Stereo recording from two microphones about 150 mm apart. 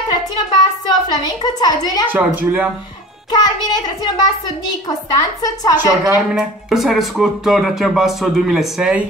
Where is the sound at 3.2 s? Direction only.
25° left (ahead or behind).